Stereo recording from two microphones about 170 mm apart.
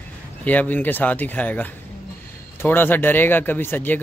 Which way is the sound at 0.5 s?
10° left (ahead or behind).